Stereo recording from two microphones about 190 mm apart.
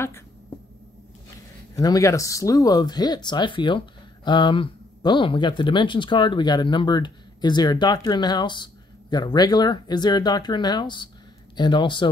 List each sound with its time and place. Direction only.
1.8 s speech: 20° left (ahead or behind)